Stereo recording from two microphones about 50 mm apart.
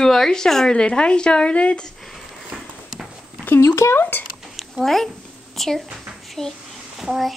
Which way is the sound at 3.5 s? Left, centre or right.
Left.